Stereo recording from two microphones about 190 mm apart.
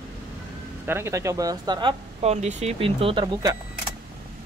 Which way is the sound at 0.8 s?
10° right (ahead or behind).